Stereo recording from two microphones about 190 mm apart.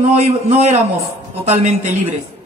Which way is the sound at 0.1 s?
35° right (ahead or behind).